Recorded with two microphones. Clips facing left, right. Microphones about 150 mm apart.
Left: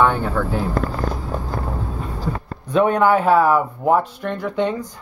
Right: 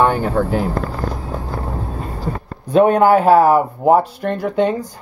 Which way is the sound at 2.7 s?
35° right (ahead or behind).